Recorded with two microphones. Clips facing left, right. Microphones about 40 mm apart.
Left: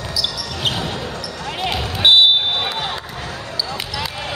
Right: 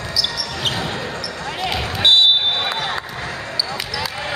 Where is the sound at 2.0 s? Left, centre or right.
Centre.